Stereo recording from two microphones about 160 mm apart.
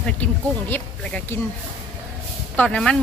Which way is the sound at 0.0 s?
10° left (ahead or behind).